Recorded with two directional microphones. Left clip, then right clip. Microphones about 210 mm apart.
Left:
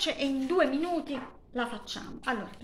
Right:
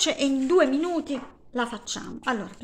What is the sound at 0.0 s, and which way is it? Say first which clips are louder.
A woman's voice: right 6 dB; 60° right (ahead or behind).